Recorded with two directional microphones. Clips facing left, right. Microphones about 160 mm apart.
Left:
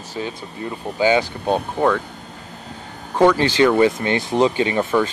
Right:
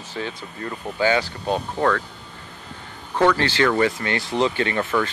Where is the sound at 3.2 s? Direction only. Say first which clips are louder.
Left 4 dB; 15° left (ahead or behind).